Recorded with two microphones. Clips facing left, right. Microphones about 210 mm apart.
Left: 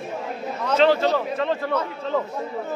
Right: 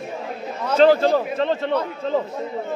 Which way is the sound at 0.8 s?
40° right (ahead or behind).